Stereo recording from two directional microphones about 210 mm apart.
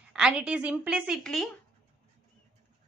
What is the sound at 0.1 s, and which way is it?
A woman's voice, 5° right (ahead or behind).